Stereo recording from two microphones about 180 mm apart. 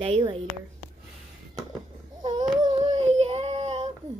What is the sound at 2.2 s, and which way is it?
Child singing, 25° right (ahead or behind).